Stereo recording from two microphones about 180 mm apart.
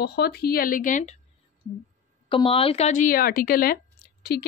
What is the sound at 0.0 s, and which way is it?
Speech, 65° left (ahead or behind).